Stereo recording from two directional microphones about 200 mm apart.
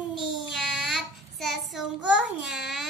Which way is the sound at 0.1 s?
Centre (ahead or behind).